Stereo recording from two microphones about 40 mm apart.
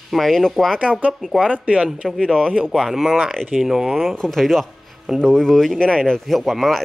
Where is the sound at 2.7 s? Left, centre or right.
Centre.